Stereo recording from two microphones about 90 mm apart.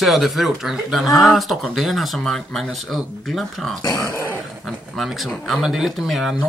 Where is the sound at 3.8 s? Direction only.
50° left (ahead or behind).